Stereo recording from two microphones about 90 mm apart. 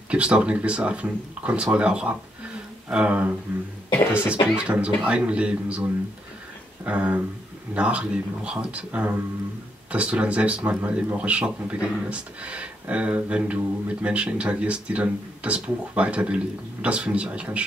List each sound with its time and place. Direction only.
0.1 s speech: 10° right (ahead or behind)